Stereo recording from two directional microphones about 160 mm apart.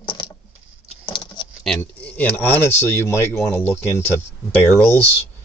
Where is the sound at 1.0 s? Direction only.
25° left (ahead or behind).